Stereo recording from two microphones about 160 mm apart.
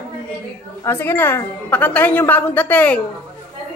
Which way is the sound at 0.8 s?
15° left (ahead or behind).